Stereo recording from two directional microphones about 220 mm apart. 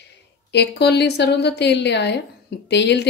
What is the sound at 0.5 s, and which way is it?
Speech, 50° left (ahead or behind).